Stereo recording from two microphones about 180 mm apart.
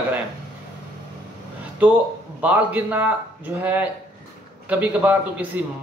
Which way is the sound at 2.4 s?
10° right (ahead or behind).